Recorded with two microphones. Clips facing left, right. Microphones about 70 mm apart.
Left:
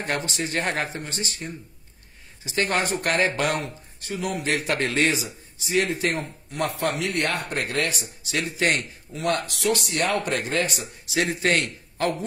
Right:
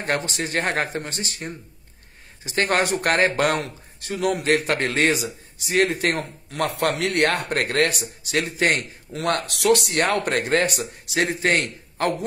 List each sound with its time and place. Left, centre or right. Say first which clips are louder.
0.0 s speech: right 2 dB; right
6.5 s speech: right 3 dB; right
7.6 s speech: right 5 dB; right
9.3 s speech: right 5 dB; right
9.9 s speech: right 3 dB; right